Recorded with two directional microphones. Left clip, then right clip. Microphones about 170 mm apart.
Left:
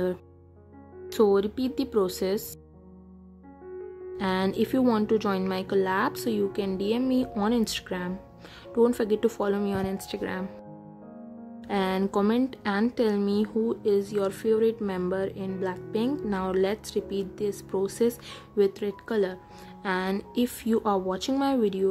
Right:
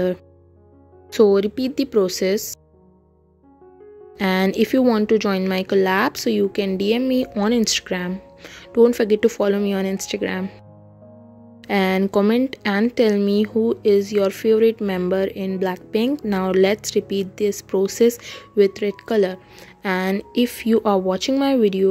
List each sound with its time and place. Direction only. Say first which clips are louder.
1.1 s speech: right 7 dB; 10° right (ahead or behind)
4.2 s speech: right 8 dB; 15° right (ahead or behind)
11.6 s speech: right 8 dB; 15° right (ahead or behind)